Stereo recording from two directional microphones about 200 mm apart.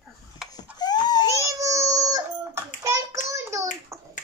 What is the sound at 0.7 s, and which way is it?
Baby cry, 20° left (ahead or behind).